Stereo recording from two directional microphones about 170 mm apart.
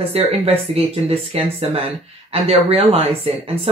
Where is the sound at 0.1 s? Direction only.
35° right (ahead or behind).